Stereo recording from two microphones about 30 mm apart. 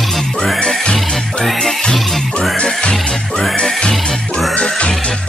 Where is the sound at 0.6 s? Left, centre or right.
Left.